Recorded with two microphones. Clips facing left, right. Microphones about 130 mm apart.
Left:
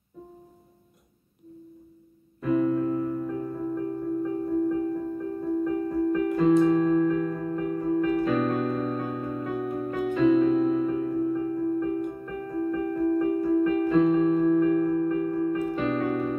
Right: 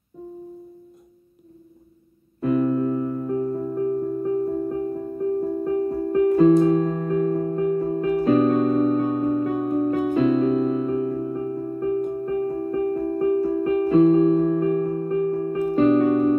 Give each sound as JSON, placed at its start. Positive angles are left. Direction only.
{"t": 2.7, "sound": "music", "side_deg": -30}